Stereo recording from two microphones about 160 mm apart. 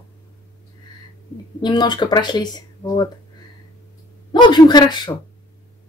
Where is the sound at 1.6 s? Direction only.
25° left (ahead or behind).